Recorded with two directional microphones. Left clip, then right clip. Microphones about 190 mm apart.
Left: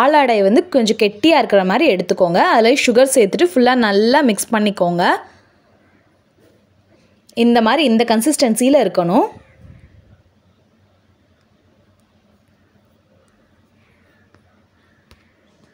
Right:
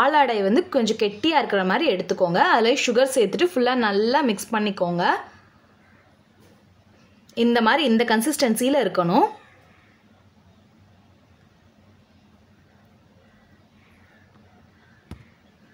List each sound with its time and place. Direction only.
0.0 s a woman's voice: 30° left (ahead or behind)
7.4 s a woman's voice: 30° left (ahead or behind)